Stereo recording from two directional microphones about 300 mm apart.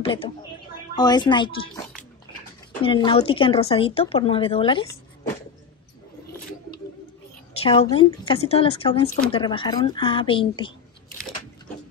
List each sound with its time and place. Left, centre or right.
0.0 s speech: centre
2.8 s speech: centre
7.5 s a sound: centre
7.9 s speech: centre